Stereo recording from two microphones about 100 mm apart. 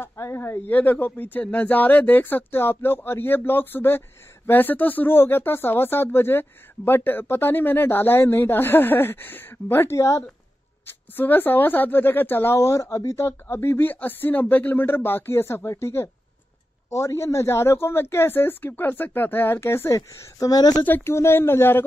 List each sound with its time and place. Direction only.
0.0 s speech: 25° left (ahead or behind)
11.1 s speech: 20° left (ahead or behind)
20.0 s a woman's voice: 40° left (ahead or behind)
20.8 s speech: 20° left (ahead or behind)